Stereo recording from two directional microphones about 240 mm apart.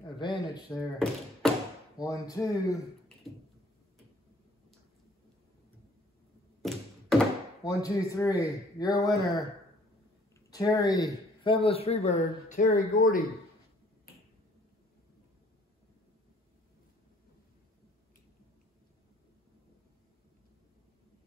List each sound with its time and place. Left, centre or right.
0.2 s speech: centre
0.9 s speech: centre
2.0 s speech: centre
6.6 s tap: centre
7.6 s speech: centre
9.1 s speech: centre
10.5 s speech: centre; by 13.2 s left